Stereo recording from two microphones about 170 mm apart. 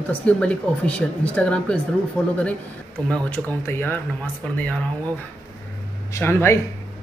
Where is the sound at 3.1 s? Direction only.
10° left (ahead or behind).